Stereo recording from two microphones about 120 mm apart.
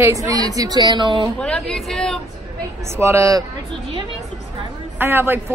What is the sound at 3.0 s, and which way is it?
Speech, 25° right (ahead or behind).